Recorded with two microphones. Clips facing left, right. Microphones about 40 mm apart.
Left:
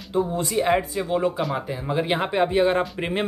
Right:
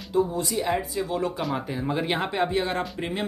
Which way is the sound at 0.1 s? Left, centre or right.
Left.